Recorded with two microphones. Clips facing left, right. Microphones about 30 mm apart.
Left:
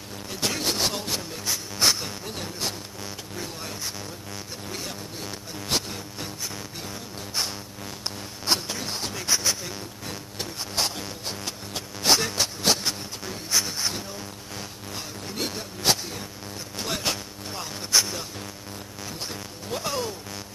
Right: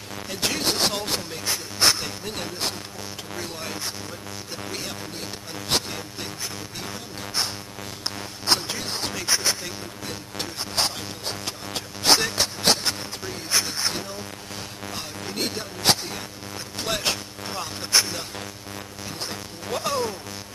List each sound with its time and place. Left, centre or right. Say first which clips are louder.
0.3 s music: right 2 dB; right
5.7 s music: right 2 dB; right
8.5 s music: right 2 dB; right
19.7 s speech: right 3 dB; centre